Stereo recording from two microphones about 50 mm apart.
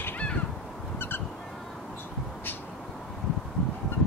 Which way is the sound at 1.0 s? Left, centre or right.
Left.